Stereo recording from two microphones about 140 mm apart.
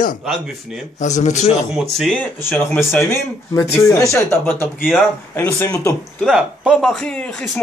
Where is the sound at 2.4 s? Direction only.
15° left (ahead or behind).